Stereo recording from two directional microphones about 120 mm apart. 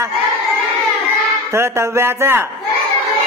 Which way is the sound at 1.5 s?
20° right (ahead or behind).